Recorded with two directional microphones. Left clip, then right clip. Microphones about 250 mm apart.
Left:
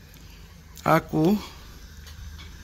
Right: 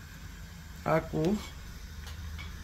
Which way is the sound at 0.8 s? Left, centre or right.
Left.